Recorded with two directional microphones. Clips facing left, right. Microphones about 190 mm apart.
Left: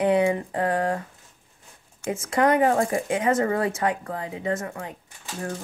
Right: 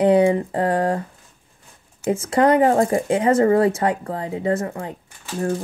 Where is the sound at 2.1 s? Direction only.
35° right (ahead or behind).